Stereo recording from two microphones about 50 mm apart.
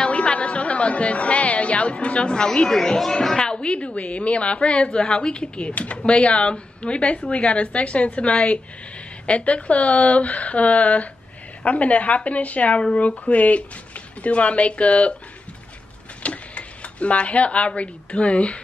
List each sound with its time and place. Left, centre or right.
0.0 s speech: left
16.2 s speech: left